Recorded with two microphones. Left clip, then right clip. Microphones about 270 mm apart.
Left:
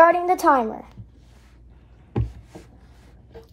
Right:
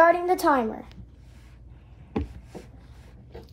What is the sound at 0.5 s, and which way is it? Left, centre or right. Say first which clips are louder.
Speech: left 5 dB; left.